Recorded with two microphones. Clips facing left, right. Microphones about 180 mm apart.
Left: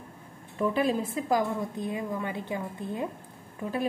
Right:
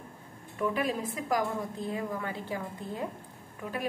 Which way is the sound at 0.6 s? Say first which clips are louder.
Left 4 dB; 30° left (ahead or behind).